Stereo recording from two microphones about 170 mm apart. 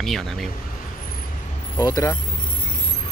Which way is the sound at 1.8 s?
20° left (ahead or behind).